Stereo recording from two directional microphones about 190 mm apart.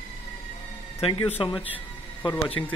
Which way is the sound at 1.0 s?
30° left (ahead or behind).